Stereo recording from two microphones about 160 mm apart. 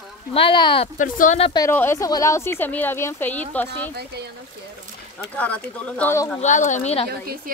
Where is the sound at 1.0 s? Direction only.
55° left (ahead or behind).